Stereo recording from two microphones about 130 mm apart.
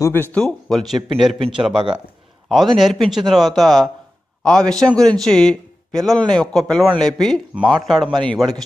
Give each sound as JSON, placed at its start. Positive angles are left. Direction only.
{"t": 0.0, "sound": "speech", "side_deg": 15}
{"t": 0.4, "sound": "a man's voice", "side_deg": 5}